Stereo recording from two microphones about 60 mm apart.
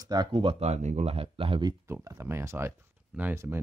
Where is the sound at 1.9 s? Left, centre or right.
Right.